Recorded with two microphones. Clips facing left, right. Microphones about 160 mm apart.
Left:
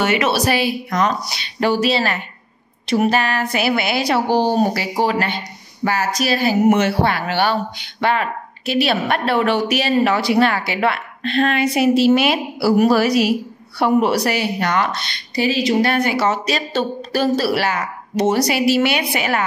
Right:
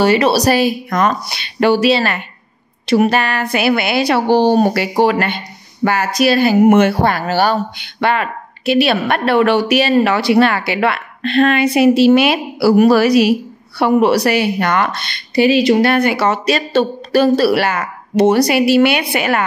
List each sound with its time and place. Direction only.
0.0 s a woman's voice: 35° right (ahead or behind)
7.7 s a woman's voice: 65° right (ahead or behind)